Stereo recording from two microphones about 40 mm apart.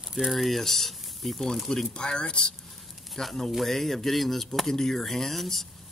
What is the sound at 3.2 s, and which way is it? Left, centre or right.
Speech, centre.